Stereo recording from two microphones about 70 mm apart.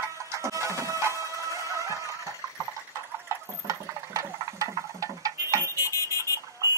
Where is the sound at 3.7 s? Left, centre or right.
Right.